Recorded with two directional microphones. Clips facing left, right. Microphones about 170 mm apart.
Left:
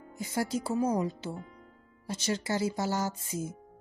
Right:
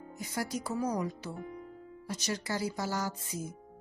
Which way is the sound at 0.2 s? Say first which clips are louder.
Left 4 dB; 25° left (ahead or behind).